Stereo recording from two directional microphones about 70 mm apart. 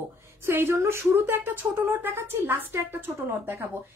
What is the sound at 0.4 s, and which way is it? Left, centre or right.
Speech, right.